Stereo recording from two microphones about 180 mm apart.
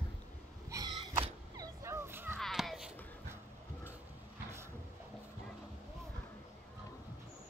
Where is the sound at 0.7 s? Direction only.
20° right (ahead or behind).